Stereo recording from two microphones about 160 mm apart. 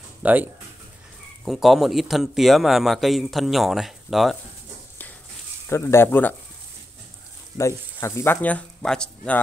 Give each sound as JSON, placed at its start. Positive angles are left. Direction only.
{"t": 0.2, "sound": "speech", "side_deg": -10}
{"t": 5.7, "sound": "speech", "side_deg": 15}
{"t": 7.5, "sound": "speech", "side_deg": 20}